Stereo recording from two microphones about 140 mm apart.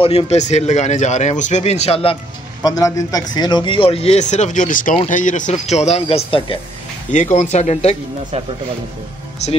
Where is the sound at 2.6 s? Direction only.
25° left (ahead or behind); by 6.5 s 40° left (ahead or behind).